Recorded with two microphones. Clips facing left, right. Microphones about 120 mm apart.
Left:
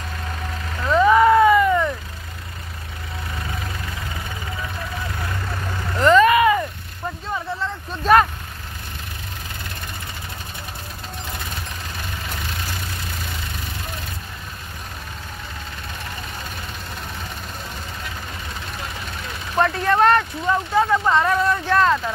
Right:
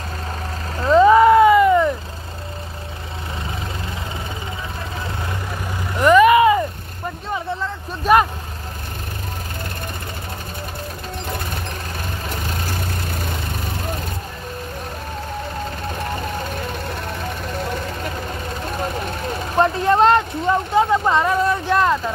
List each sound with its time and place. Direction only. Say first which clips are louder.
0.7 s vehicle: right 4 dB; 25° right (ahead or behind)
5.9 s vehicle: right 3 dB; 15° right (ahead or behind)
8.0 s vehicle: even; 10° right (ahead or behind)
18.7 s vehicle: right 11 dB; 45° right (ahead or behind)
19.6 s a sound: right 2 dB; 25° right (ahead or behind)